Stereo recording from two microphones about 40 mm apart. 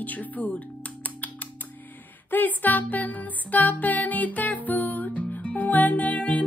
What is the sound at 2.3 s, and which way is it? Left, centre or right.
Music, left.